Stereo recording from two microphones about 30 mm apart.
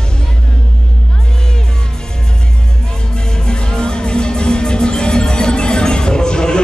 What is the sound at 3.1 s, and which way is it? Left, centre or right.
Music, left.